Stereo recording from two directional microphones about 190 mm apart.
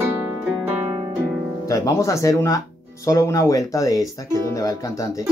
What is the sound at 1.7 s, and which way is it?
Speech, 15° left (ahead or behind).